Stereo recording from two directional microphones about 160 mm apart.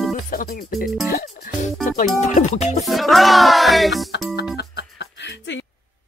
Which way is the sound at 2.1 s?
45° left (ahead or behind).